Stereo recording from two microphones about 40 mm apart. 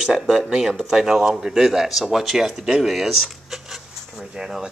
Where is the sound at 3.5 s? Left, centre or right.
Centre.